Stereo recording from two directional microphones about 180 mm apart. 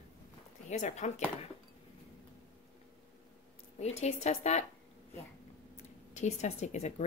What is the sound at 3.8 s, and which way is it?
Speech, 35° left (ahead or behind).